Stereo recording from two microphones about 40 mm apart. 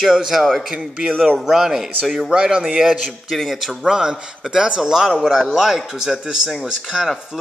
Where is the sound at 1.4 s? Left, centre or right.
Centre.